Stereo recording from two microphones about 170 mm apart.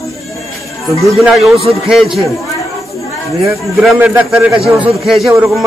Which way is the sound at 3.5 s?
10° right (ahead or behind).